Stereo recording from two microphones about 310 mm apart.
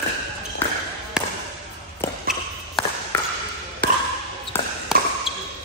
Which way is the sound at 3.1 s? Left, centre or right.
Centre.